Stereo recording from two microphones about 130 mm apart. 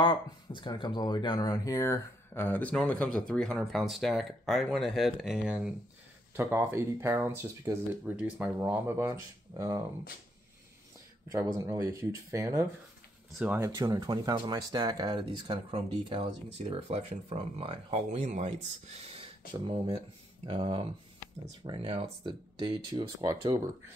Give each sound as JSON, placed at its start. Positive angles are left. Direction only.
{"t": 0.0, "sound": "speech", "side_deg": 40}
{"t": 11.2, "sound": "speech", "side_deg": -25}
{"t": 13.7, "sound": "speech", "side_deg": -30}
{"t": 19.5, "sound": "speech", "side_deg": -35}